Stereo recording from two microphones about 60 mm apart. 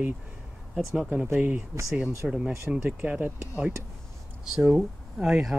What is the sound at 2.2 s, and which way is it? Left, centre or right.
Speech, centre.